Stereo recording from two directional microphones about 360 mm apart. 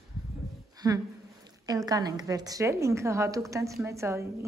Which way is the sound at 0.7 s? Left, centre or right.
Centre.